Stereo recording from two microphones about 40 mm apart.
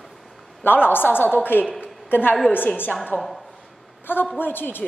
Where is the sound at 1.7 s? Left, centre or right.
Left.